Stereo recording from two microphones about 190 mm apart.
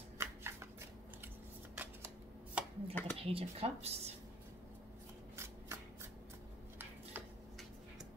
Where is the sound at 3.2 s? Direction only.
30° right (ahead or behind).